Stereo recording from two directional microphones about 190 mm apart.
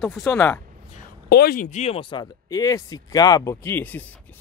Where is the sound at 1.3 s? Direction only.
55° left (ahead or behind).